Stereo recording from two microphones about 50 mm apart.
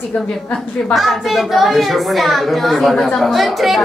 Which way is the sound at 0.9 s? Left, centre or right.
Centre.